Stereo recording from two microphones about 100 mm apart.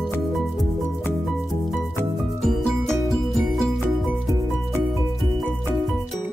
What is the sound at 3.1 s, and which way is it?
Music, centre (ahead or behind).